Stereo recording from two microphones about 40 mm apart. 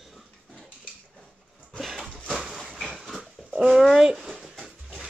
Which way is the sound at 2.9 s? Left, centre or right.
Centre.